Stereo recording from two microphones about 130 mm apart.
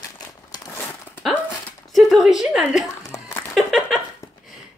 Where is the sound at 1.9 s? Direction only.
Centre (ahead or behind).